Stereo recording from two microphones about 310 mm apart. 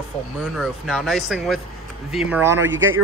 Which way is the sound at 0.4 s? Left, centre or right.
Centre.